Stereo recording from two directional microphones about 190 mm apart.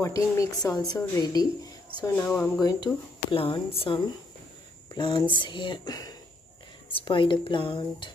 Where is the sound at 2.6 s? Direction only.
20° left (ahead or behind).